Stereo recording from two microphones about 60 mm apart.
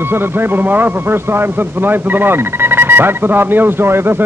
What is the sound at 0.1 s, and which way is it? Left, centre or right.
A man's voice, right.